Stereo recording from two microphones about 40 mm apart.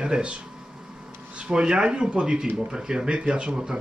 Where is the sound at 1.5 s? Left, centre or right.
Right.